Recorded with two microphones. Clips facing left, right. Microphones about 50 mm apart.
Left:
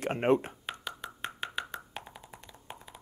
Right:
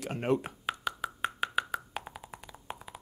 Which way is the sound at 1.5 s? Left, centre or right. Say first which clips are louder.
Right 6 dB; centre.